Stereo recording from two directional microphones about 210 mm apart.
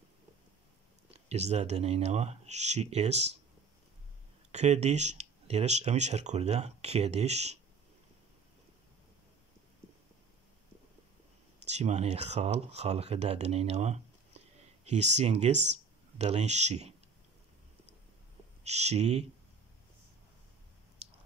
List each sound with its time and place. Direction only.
1.1 s speech: 30° right (ahead or behind)
4.5 s speech: 30° right (ahead or behind)
11.6 s speech: 30° right (ahead or behind)
18.6 s speech: 30° right (ahead or behind)